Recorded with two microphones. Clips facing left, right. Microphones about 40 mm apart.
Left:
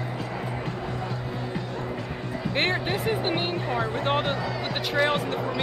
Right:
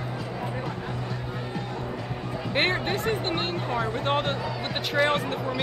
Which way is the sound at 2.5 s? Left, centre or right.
Centre.